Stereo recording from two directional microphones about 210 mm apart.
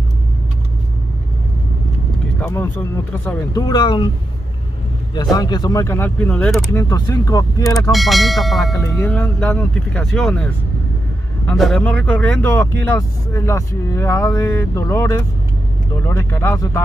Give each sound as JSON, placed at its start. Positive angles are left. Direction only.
{"t": 2.4, "sound": "speech", "side_deg": 10}
{"t": 5.1, "sound": "speech", "side_deg": 20}
{"t": 7.9, "sound": "speech", "side_deg": 0}